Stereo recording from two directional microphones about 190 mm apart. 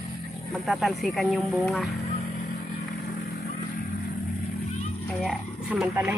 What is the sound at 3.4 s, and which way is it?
Vehicle, 50° left (ahead or behind).